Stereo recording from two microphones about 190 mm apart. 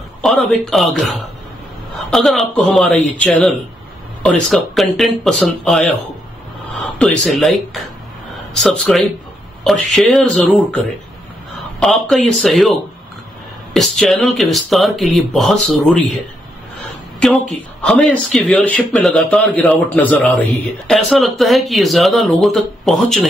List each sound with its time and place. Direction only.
0.2 s a sound: centre (ahead or behind)
0.7 s speech: centre (ahead or behind)
7.0 s speech: 5° left (ahead or behind)
11.8 s speech: centre (ahead or behind)
13.7 s speech: centre (ahead or behind)
17.2 s speech: 5° left (ahead or behind)